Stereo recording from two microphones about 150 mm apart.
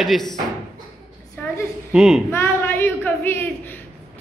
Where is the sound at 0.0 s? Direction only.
Centre (ahead or behind).